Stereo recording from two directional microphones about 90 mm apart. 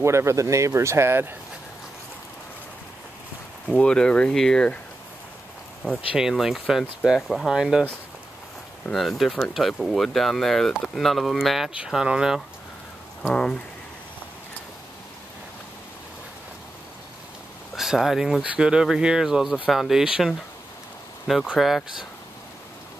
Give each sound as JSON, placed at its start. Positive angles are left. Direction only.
{"t": 0.0, "sound": "speech", "side_deg": -30}
{"t": 3.6, "sound": "speech", "side_deg": 10}
{"t": 6.1, "sound": "speech", "side_deg": -5}
{"t": 8.9, "sound": "speech", "side_deg": 0}
{"t": 13.2, "sound": "speech", "side_deg": 10}
{"t": 17.7, "sound": "speech", "side_deg": -5}
{"t": 21.5, "sound": "speech", "side_deg": 0}